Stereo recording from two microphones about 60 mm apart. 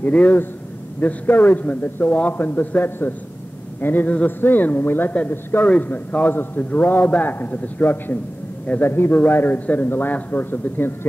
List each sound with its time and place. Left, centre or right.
0.0 s a man's voice: left
5.7 s a man's voice: left